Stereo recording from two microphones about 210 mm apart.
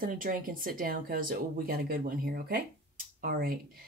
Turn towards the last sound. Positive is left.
turn(degrees=-45)  # may be behind; listen again after turning